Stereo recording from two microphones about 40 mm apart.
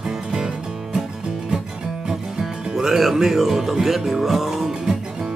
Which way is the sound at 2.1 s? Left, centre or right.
Centre.